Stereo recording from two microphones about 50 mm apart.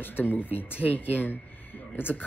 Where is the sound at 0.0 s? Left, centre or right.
Left.